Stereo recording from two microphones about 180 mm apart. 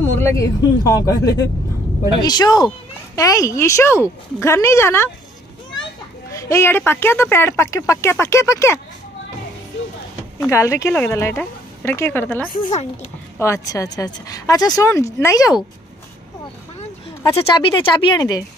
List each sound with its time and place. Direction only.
0.2 s speech: 15° left (ahead or behind)
6.3 s speech: 15° left (ahead or behind)
10.4 s speech: 15° left (ahead or behind)
12.5 s speech: 40° left (ahead or behind)
13.4 s speech: 15° left (ahead or behind)
17.3 s speech: 30° left (ahead or behind)